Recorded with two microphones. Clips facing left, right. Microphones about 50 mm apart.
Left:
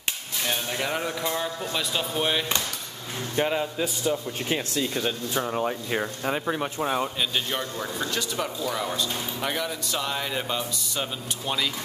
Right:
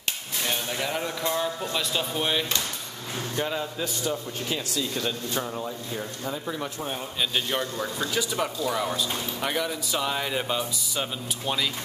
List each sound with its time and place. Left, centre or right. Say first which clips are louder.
0.5 s music: left 1 dB; centre
1.6 s speech: even; centre
3.3 s speech: left 5 dB; left
3.8 s speech: left 3 dB; centre
4.5 s speech: left 3 dB; left
4.9 s speech: left 2 dB; centre
5.7 s speech: left 5 dB; left
6.4 s speech: left 4 dB; left
7.2 s speech: right 1 dB; centre